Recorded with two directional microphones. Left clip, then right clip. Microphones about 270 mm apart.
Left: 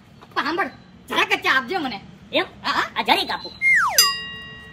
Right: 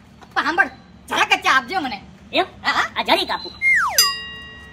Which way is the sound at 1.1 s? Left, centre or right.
Centre.